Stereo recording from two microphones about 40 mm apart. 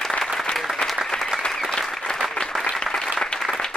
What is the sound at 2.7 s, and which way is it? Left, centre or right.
Applause, centre.